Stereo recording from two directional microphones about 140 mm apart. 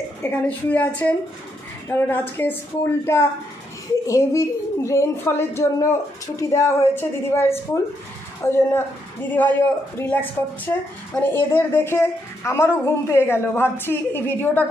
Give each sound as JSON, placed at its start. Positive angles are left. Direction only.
{"t": 0.2, "sound": "a woman's voice", "side_deg": 15}